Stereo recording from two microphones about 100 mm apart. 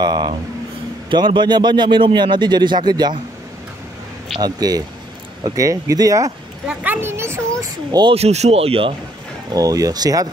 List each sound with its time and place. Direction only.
0.0 s speech: 45° right (ahead or behind)
4.4 s speech: 40° right (ahead or behind)
6.7 s a child's voice: 15° right (ahead or behind)
8.1 s speech: 90° right; by 8.9 s 70° right (ahead or behind)
9.5 s speech: 35° right (ahead or behind)